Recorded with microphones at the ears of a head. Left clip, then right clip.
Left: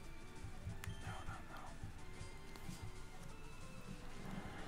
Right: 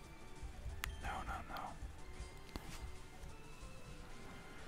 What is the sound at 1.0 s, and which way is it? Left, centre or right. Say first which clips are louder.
Music: right 8 dB; right.